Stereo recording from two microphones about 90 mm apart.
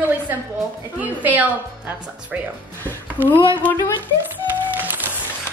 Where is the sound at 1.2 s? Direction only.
20° right (ahead or behind).